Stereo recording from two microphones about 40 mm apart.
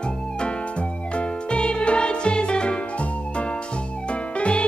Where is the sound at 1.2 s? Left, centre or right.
Left.